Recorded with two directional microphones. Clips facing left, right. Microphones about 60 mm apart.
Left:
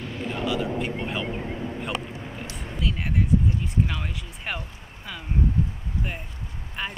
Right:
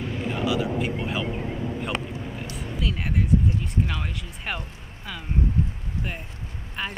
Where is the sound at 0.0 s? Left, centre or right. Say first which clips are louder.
Right 2 dB; centre.